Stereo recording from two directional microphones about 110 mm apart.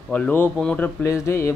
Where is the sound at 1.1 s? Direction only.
25° left (ahead or behind).